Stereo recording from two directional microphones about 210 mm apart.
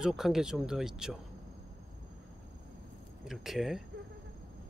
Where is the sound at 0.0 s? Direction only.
Centre (ahead or behind).